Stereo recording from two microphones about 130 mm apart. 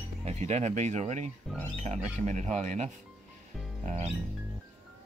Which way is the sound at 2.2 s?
65° right (ahead or behind).